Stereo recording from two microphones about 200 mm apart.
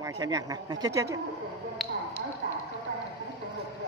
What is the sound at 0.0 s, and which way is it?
Speech, 15° right (ahead or behind).